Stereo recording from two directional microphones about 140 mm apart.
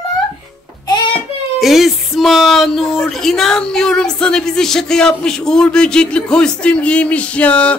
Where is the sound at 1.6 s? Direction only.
Centre (ahead or behind).